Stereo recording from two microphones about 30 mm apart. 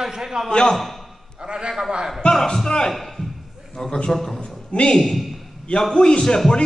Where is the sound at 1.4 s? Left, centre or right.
Right.